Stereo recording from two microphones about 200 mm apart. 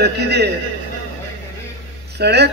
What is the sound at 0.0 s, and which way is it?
Speech, 55° right (ahead or behind).